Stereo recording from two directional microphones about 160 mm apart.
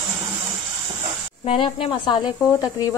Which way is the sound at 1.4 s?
35° left (ahead or behind).